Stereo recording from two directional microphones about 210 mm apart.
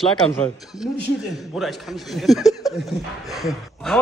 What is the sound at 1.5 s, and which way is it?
Speech, centre (ahead or behind).